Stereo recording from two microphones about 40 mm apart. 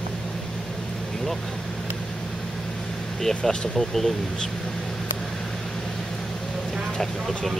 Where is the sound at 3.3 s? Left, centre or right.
Centre.